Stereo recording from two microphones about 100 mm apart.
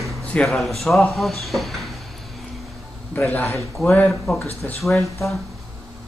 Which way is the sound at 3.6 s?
Centre (ahead or behind).